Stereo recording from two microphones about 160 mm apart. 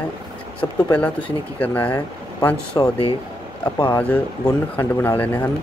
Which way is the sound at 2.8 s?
25° left (ahead or behind).